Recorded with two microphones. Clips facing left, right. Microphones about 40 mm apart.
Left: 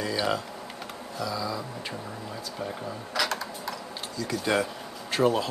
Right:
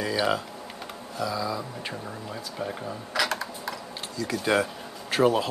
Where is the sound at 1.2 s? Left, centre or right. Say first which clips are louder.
Right 2 dB; centre.